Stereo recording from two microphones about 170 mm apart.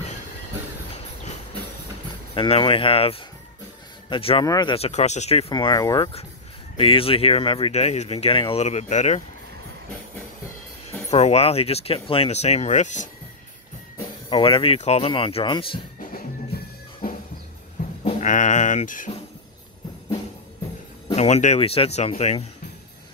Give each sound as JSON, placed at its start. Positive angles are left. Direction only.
{"t": 2.3, "sound": "speech", "side_deg": 35}
{"t": 5.5, "sound": "speech", "side_deg": 25}
{"t": 10.9, "sound": "speech", "side_deg": 40}
{"t": 14.3, "sound": "speech", "side_deg": 35}
{"t": 16.1, "sound": "drum", "side_deg": 55}
{"t": 18.2, "sound": "speech", "side_deg": 45}
{"t": 21.1, "sound": "speech", "side_deg": 40}